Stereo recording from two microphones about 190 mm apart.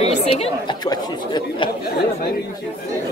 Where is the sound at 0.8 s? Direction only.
20° left (ahead or behind).